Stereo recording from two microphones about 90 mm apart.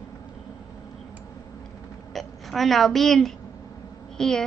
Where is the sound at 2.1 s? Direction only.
Centre (ahead or behind).